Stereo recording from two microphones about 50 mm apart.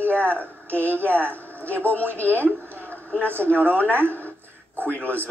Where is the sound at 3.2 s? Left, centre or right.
Right.